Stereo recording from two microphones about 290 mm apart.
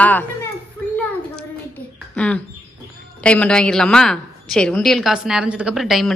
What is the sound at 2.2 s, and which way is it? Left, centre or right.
Bird, centre.